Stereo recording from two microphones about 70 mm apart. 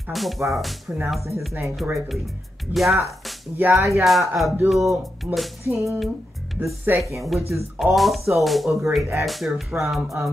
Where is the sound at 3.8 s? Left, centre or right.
Right.